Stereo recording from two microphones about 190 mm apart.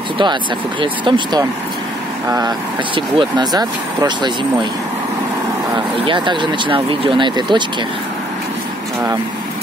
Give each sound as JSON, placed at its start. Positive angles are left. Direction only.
{"t": 0.2, "sound": "speech", "side_deg": -25}
{"t": 6.0, "sound": "speech", "side_deg": -25}